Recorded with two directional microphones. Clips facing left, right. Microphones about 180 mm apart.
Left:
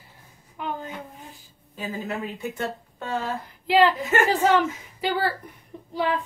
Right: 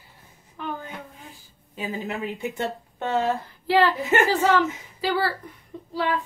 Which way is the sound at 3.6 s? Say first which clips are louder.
Left 2 dB; 20° left (ahead or behind).